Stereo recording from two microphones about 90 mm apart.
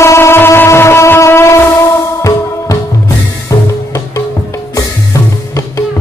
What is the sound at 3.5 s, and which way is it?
Music, 40° left (ahead or behind).